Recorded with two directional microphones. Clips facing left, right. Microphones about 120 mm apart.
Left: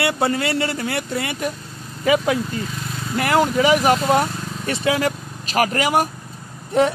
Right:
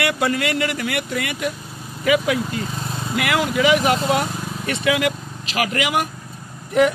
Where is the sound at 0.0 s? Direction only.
30° left (ahead or behind).